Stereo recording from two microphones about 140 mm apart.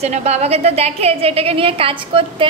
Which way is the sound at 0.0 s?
50° right (ahead or behind).